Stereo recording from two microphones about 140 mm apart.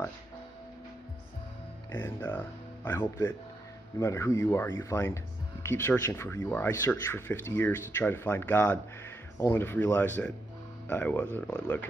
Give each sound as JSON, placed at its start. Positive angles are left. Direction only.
{"t": 1.9, "sound": "speech", "side_deg": 15}